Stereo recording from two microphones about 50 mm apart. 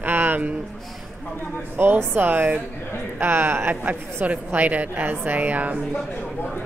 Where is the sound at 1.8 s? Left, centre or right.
Right.